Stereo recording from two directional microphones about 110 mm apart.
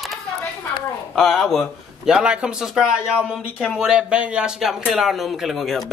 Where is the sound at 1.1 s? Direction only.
5° left (ahead or behind).